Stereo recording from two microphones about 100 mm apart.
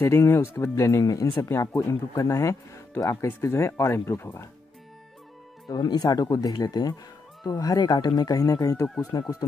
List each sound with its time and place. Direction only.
0.0 s speech: 25° left (ahead or behind)
5.7 s speech: 40° left (ahead or behind)